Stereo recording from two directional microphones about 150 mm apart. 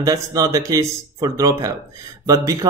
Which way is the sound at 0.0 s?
25° right (ahead or behind).